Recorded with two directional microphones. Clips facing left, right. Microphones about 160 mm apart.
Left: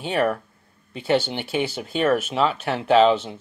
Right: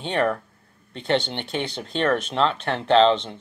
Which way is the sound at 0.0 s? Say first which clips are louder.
Left 1 dB; 5° left (ahead or behind).